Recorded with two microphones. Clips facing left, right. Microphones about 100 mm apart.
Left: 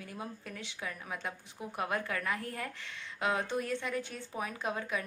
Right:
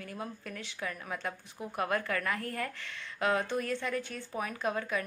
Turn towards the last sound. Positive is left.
turn(degrees=20)  # may be behind; listen again after turning